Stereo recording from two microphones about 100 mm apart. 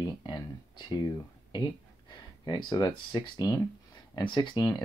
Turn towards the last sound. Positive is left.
turn(degrees=45)  # may be behind; listen again after turning